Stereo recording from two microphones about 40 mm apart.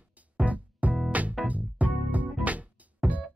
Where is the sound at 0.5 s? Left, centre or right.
Right.